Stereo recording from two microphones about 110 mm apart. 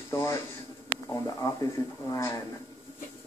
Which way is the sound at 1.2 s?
30° left (ahead or behind).